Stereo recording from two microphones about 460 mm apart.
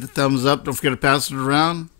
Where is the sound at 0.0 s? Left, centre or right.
Left.